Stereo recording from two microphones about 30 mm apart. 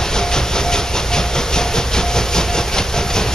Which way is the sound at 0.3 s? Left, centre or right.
Left.